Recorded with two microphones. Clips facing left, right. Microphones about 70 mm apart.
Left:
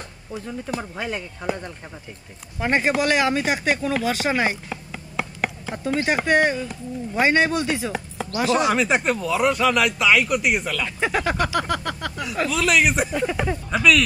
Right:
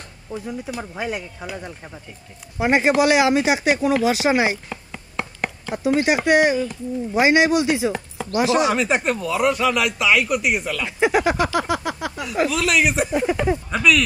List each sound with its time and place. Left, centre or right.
0.7 s speech: centre
2.6 s speech: centre
4.6 s a sound: centre
5.9 s speech: centre
10.9 s speech: centre
12.2 s speech: centre
13.1 s speech: centre
13.7 s speech: centre